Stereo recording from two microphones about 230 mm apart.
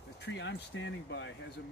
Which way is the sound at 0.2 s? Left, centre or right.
Left.